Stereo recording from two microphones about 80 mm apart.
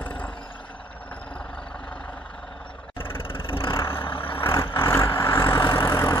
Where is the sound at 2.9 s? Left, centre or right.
Left.